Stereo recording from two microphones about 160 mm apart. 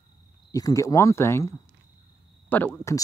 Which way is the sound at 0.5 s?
20° left (ahead or behind).